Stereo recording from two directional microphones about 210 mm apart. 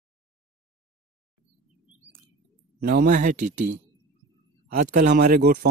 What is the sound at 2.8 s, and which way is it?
Speech, 45° right (ahead or behind).